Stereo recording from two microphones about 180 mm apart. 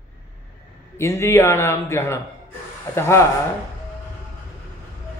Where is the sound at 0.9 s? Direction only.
15° left (ahead or behind).